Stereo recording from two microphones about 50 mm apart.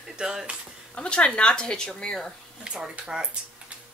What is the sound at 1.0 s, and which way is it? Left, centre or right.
A woman's voice, left.